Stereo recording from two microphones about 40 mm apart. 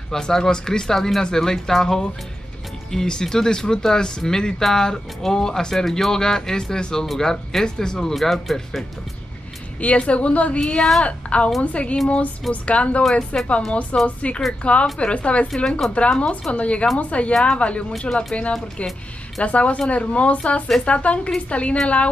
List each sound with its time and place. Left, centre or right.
0.1 s speech: centre
8.1 s speech: centre
9.8 s speech: left
10.6 s speech: centre
11.1 s a woman's voice: left
15.4 s speech: centre
15.9 s a woman's voice: left